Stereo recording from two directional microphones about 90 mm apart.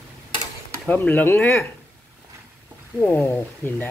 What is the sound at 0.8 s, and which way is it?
Speech, 20° left (ahead or behind).